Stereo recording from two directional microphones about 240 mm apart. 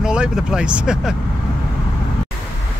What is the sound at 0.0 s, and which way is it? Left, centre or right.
Speech, centre.